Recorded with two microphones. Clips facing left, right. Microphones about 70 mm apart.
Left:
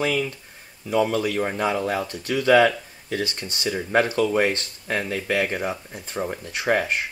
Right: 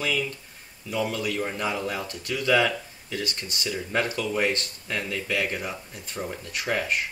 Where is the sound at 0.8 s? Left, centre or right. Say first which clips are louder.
Left 6 dB; left.